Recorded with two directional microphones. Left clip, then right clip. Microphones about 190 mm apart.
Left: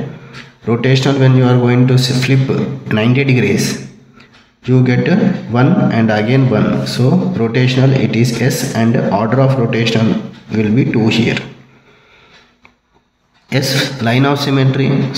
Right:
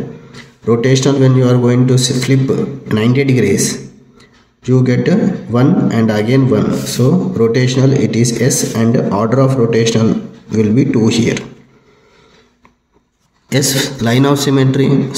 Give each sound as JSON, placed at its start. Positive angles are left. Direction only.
{"t": 0.7, "sound": "a man's voice", "side_deg": -25}
{"t": 13.5, "sound": "a man's voice", "side_deg": -30}